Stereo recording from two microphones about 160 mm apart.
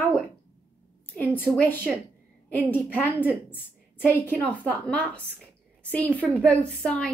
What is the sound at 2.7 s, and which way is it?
A woman's voice, 10° left (ahead or behind).